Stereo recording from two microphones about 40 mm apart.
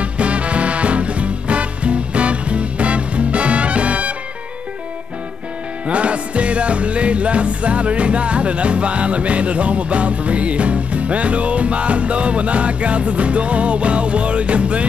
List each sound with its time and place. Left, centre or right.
0.0 s swing music: right
5.9 s music: right